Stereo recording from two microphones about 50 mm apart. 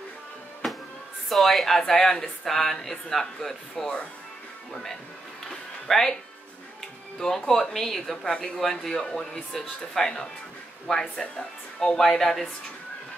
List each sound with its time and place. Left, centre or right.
1.3 s a woman's voice: centre
5.9 s speech: centre
7.2 s speech: centre
12.0 s speech: centre